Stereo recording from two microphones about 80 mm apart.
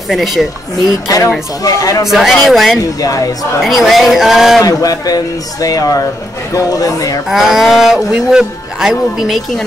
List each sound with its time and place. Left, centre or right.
0.1 s speech: centre
1.6 s speech: left
2.0 s speech: centre
3.0 s speech: left
3.6 s speech: centre
4.6 s speech: left
7.2 s speech: centre